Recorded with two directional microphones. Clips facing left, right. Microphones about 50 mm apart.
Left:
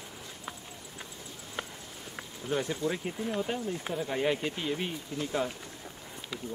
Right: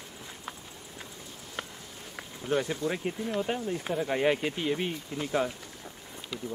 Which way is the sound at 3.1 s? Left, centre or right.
Centre.